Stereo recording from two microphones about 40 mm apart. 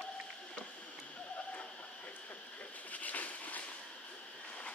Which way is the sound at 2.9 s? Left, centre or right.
Left.